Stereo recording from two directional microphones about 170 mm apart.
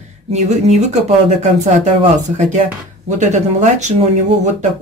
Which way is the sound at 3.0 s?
45° right (ahead or behind).